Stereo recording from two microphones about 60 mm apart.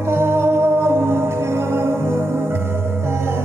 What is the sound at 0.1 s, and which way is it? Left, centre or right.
Music, right.